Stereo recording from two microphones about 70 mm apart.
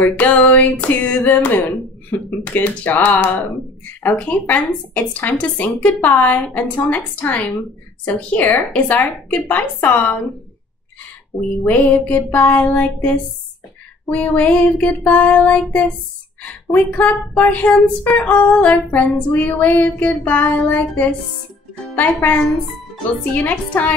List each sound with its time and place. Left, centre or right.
0.0 s speech: left
11.6 s speech: left